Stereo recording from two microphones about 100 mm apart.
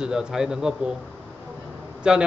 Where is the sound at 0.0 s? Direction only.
5° right (ahead or behind).